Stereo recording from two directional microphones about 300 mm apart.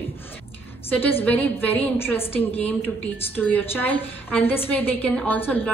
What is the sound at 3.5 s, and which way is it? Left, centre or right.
A woman's voice, centre.